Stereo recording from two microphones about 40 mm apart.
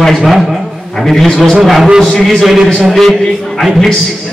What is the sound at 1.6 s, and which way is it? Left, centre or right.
Speech, centre.